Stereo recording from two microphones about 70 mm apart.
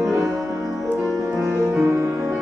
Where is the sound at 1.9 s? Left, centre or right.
Right.